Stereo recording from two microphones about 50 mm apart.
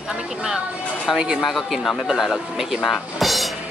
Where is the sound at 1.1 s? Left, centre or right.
Centre.